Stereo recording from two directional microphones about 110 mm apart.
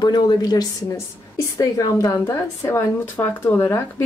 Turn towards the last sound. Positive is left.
turn(degrees=25)  # may be behind; listen again after turning